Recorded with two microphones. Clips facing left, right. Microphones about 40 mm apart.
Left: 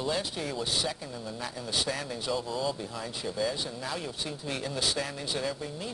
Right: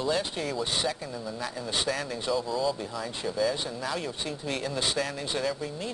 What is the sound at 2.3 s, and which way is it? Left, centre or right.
Speech, centre.